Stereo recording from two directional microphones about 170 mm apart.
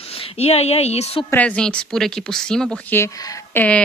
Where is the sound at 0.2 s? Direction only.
40° left (ahead or behind).